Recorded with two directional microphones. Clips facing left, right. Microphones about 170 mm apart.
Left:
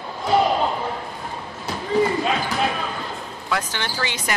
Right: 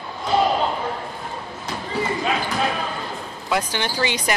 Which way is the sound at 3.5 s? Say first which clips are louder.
Right 3 dB; 15° right (ahead or behind).